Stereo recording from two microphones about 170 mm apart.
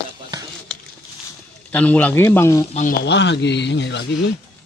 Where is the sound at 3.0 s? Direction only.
90° left.